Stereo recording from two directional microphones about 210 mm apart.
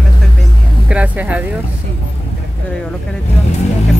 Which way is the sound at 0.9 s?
5° right (ahead or behind).